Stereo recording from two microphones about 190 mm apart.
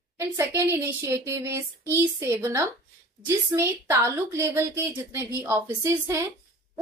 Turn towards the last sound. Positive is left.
turn(degrees=-15)  # may be behind; listen again after turning